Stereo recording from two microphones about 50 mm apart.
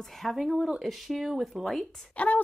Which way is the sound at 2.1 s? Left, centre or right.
Left.